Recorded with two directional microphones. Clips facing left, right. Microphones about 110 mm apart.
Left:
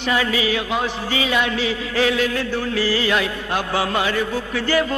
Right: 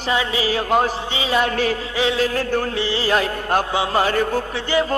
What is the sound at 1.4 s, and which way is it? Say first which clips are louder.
Music: right 2 dB; 45° right (ahead or behind).